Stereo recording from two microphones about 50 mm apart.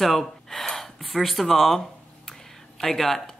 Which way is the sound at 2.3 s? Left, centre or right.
Centre.